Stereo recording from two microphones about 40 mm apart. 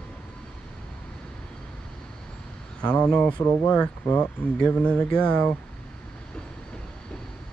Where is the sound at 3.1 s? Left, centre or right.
Left.